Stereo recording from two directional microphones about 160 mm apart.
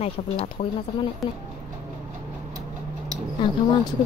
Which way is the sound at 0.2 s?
40° left (ahead or behind).